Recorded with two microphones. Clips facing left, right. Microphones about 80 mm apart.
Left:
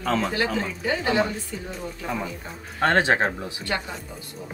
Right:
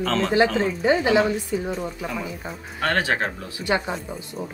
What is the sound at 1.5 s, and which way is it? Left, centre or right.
Speech, centre.